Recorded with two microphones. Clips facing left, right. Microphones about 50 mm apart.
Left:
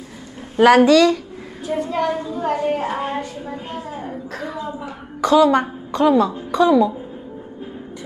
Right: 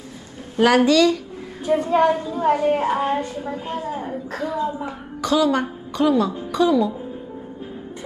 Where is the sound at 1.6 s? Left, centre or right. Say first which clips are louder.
Right 4 dB; right.